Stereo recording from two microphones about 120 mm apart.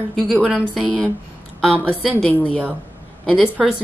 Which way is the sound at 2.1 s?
10° left (ahead or behind).